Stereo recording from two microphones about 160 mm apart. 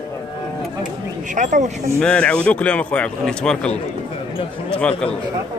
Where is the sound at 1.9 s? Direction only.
5° left (ahead or behind).